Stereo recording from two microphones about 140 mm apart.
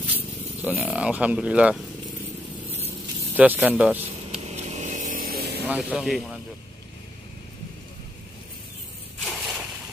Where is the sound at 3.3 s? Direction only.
10° right (ahead or behind).